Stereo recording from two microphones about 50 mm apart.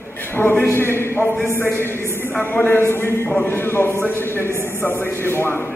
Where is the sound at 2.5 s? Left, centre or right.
Left.